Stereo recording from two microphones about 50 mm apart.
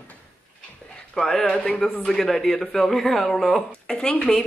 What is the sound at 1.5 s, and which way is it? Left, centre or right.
Speech, left.